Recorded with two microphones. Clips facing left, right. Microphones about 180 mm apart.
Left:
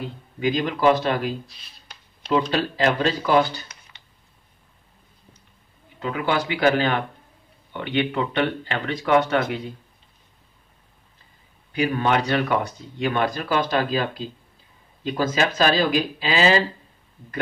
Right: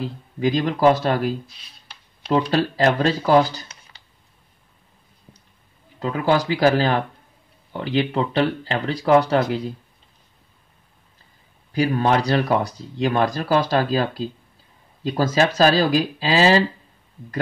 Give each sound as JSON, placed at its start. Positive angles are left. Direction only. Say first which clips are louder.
{"t": 0.0, "sound": "speech", "louder": "right 3 dB", "side_deg": -40}
{"t": 5.9, "sound": "speech", "louder": "right 4 dB", "side_deg": -35}
{"t": 11.7, "sound": "speech", "louder": "right 2 dB", "side_deg": -35}